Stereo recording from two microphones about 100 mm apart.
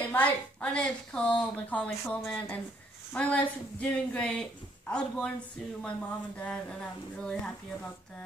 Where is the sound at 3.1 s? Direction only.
15° left (ahead or behind).